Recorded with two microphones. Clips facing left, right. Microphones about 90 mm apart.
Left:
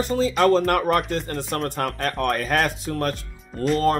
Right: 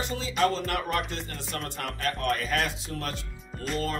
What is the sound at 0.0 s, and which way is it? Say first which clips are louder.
Speech: left 7 dB; 40° left (ahead or behind).